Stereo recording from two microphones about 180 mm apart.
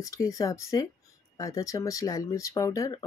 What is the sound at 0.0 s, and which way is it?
Speech, 20° left (ahead or behind).